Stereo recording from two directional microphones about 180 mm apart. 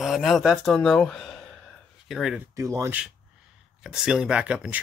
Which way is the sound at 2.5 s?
15° right (ahead or behind).